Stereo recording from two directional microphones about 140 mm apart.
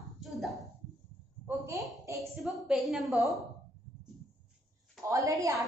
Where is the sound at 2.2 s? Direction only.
5° right (ahead or behind).